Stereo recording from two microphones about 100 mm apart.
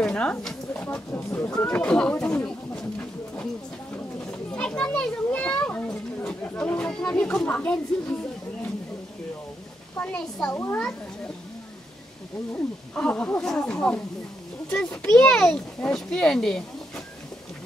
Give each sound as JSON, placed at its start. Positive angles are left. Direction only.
{"t": 0.0, "sound": "a child's voice", "side_deg": 10}
{"t": 4.3, "sound": "a child's voice", "side_deg": 10}
{"t": 9.9, "sound": "a child's voice", "side_deg": 10}
{"t": 10.5, "sound": "a child's voice", "side_deg": 25}
{"t": 12.5, "sound": "a child's voice", "side_deg": 15}